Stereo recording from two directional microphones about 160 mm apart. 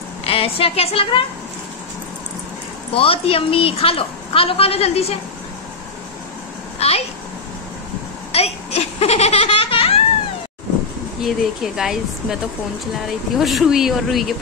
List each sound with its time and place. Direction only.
0.2 s a woman's voice: 35° left (ahead or behind)
2.9 s a woman's voice: 35° left (ahead or behind)
6.8 s a child's voice: 40° left (ahead or behind)
8.3 s baby laughter: 40° left (ahead or behind)
11.2 s speech: centre (ahead or behind)
13.4 s speech: centre (ahead or behind)